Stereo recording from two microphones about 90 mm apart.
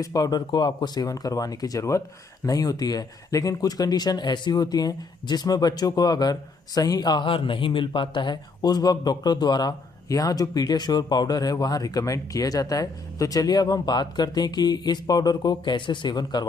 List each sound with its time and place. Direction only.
0.0 s a man's voice: 45° left (ahead or behind)
7.2 s a man's voice: 75° left (ahead or behind); by 16.4 s 50° left (ahead or behind)